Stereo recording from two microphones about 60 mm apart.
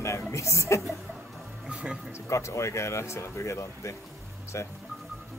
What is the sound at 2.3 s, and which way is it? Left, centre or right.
Speech, left.